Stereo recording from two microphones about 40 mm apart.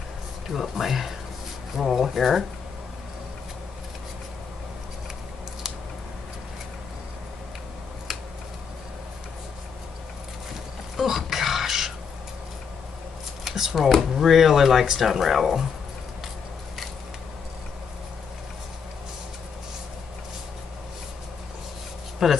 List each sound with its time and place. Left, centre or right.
0.5 s speech: centre
8.1 s a sound: centre
11.0 s burping: centre
13.4 s shuffling cards: centre
14.0 s speech: centre
22.2 s speech: centre